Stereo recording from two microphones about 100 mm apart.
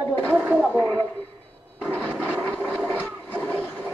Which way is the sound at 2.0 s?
15° left (ahead or behind).